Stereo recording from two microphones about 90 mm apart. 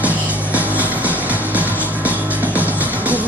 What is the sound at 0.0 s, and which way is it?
Music, 15° right (ahead or behind).